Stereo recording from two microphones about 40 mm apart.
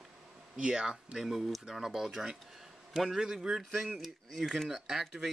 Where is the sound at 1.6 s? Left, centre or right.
Centre.